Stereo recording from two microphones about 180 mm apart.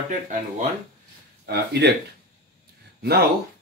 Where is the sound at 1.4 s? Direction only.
65° right (ahead or behind).